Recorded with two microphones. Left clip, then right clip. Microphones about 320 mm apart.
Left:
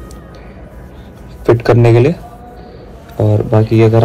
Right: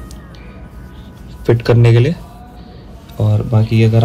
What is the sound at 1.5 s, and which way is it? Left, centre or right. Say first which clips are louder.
Speech: left 4 dB; centre.